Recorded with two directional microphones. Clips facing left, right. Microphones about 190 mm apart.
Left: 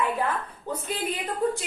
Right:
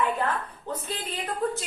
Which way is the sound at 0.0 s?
10° left (ahead or behind).